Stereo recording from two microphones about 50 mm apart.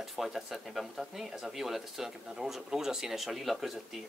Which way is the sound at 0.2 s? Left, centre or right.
Centre.